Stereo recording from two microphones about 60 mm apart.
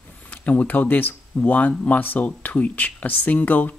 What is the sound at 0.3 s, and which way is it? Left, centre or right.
Speech, left.